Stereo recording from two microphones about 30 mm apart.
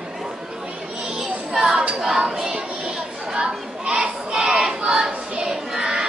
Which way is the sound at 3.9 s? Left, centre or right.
Right.